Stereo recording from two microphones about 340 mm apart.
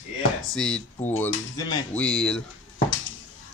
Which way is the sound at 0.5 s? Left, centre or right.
Centre.